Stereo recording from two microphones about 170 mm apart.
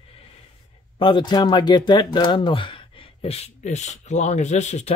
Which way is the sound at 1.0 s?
25° left (ahead or behind).